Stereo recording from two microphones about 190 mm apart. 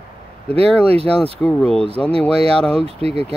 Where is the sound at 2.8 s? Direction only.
30° right (ahead or behind).